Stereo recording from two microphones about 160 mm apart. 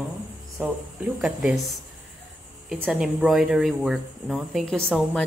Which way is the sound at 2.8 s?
Centre (ahead or behind).